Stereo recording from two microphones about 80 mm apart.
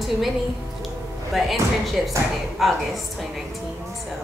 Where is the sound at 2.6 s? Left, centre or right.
Centre.